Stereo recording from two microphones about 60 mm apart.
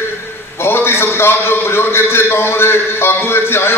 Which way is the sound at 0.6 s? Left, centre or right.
Left.